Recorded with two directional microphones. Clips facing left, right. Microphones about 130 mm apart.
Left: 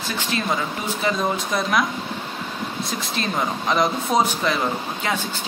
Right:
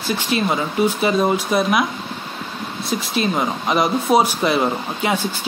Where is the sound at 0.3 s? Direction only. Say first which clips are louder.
Right 5 dB; 20° right (ahead or behind).